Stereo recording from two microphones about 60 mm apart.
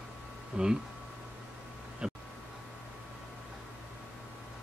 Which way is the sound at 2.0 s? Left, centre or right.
Centre.